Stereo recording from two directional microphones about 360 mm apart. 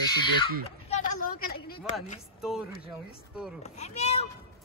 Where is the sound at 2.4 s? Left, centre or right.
Centre.